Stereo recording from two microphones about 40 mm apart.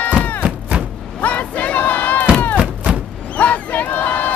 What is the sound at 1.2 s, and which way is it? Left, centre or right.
Battle cry, left.